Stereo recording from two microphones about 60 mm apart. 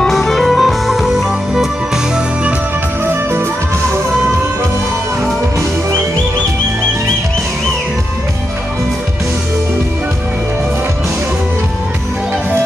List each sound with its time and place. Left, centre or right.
0.0 s music: centre
3.1 s music: right